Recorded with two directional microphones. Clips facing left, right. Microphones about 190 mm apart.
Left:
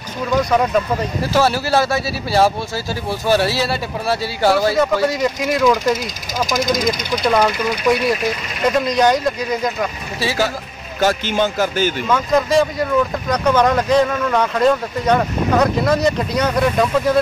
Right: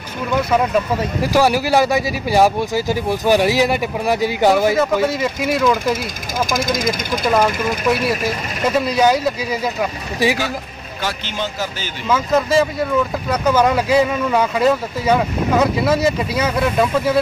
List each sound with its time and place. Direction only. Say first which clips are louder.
0.4 s speech: even; 5° right (ahead or behind)
5.0 s speech: left 1 dB; 5° right (ahead or behind)
7.2 s speech: even; 5° right (ahead or behind)
11.0 s a man's voice: left 8 dB; 45° left (ahead or behind)
12.1 s speech: right 2 dB; 5° right (ahead or behind)